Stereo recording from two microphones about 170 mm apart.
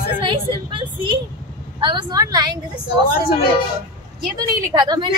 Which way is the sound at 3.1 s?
60° left (ahead or behind).